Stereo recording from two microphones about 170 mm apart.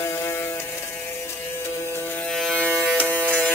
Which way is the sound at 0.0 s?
15° left (ahead or behind).